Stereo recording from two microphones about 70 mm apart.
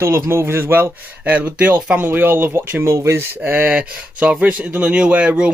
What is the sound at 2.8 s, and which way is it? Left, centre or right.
Speech, right.